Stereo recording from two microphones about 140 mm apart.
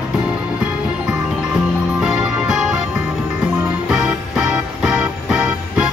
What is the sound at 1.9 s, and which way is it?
Music, 5° right (ahead or behind).